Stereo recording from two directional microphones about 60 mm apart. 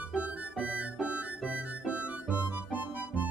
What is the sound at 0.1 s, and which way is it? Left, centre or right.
Music, right.